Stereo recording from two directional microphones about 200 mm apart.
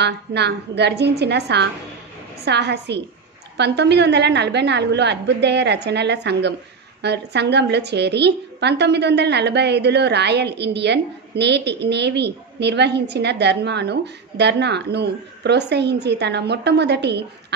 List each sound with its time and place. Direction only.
0.0 s a woman's voice: 55° right (ahead or behind)